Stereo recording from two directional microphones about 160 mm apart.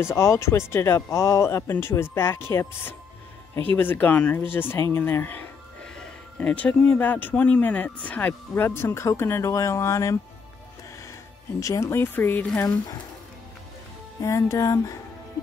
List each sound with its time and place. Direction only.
0.0 s speech: 15° left (ahead or behind)
11.6 s speech: 20° left (ahead or behind)
12.6 s speech: 25° left (ahead or behind)
14.2 s speech: 20° left (ahead or behind)